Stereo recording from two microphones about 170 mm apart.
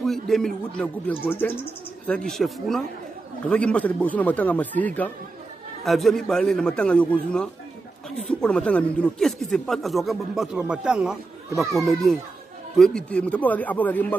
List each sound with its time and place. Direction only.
0.0 s a man's voice: centre (ahead or behind)
8.2 s speech: 5° left (ahead or behind)